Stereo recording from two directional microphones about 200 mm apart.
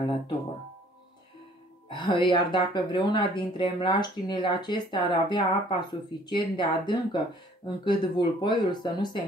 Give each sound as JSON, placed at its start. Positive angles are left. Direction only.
{"t": 1.9, "sound": "speech", "side_deg": 25}